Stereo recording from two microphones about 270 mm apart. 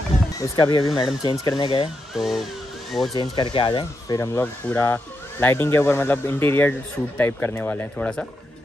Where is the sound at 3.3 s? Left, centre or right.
Centre.